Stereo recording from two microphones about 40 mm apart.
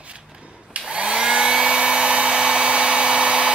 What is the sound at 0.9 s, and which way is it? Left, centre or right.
Hair dryer, right.